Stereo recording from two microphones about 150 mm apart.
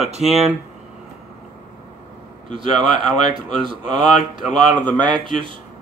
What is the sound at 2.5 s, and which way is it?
A man's voice, 35° right (ahead or behind).